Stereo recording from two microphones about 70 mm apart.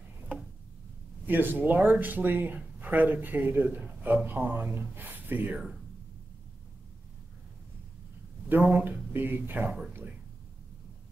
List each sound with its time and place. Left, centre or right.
1.2 s speech: right
8.5 s speech: right